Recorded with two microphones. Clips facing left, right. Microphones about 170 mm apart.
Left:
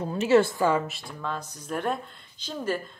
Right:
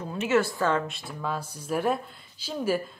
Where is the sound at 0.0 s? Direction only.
35° left (ahead or behind).